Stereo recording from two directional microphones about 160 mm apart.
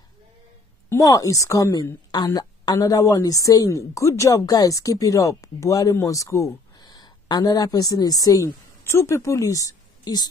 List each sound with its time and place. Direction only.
0.8 s a woman's voice: 20° left (ahead or behind)